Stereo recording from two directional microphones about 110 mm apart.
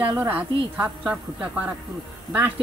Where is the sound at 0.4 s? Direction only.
15° right (ahead or behind).